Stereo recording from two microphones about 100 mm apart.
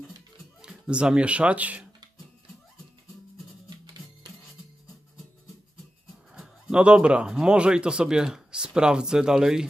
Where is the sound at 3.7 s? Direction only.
45° right (ahead or behind).